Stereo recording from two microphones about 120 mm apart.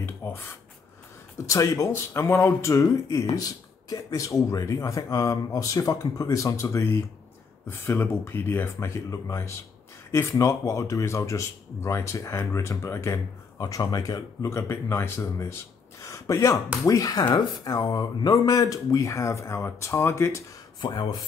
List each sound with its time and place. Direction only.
0.0 s a sound: 20° left (ahead or behind)
1.4 s speech: 25° left (ahead or behind)
20.8 s speech: 35° left (ahead or behind)